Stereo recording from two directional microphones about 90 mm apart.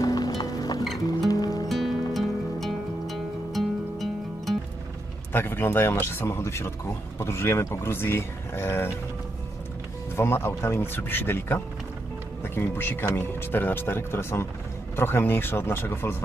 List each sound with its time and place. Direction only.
0.0 s music: 45° left (ahead or behind)
1.7 s music: centre (ahead or behind)
5.3 s speech: 25° left (ahead or behind)
10.1 s speech: 25° left (ahead or behind)